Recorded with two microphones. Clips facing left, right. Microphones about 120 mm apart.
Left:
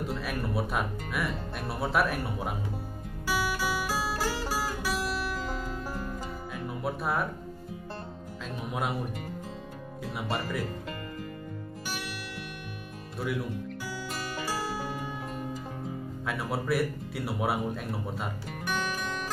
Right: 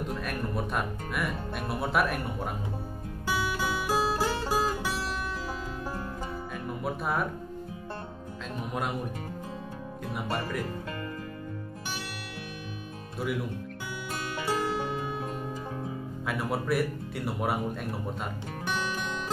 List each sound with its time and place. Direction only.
0.2 s speech: 5° left (ahead or behind)
3.3 s music: 20° right (ahead or behind)
6.5 s music: centre (ahead or behind)
10.1 s speech: centre (ahead or behind)
16.3 s speech: centre (ahead or behind)